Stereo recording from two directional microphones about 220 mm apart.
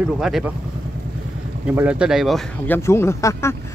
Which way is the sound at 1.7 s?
5° right (ahead or behind).